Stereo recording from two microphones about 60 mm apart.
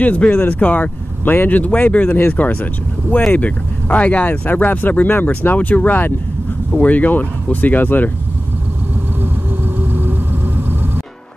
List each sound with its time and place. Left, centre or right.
0.0 s speech: left
9.8 s vehicle: right